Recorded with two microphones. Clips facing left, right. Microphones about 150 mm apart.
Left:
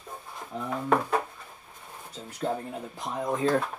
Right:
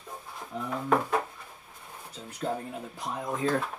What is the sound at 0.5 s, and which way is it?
Speech, 35° left (ahead or behind).